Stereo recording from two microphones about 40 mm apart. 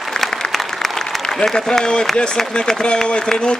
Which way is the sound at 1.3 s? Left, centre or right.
Centre.